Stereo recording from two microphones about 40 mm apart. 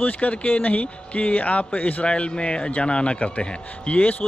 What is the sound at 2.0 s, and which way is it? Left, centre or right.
A man's voice, left.